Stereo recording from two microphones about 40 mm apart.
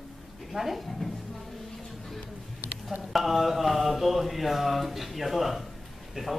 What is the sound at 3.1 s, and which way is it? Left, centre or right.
A woman's voice, centre.